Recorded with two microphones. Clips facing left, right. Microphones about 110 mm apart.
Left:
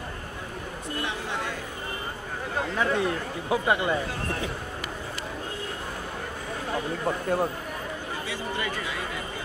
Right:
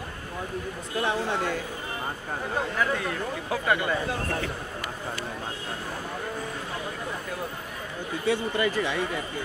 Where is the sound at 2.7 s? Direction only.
25° left (ahead or behind).